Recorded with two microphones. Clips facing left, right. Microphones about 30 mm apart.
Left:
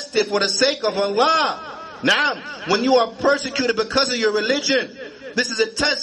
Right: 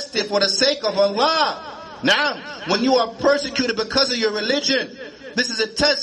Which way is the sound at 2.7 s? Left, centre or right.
Right.